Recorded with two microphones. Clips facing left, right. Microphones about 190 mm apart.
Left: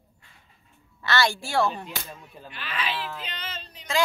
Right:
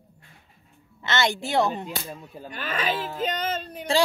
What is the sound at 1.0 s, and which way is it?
Speech, 20° right (ahead or behind).